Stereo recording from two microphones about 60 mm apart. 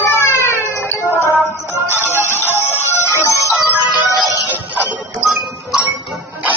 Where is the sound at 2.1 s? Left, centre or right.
Right.